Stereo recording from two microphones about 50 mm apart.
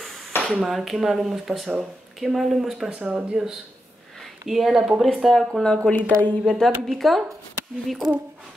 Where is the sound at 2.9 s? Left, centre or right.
Right.